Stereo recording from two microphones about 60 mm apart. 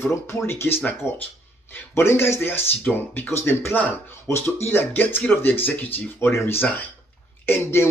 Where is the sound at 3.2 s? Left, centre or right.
Left.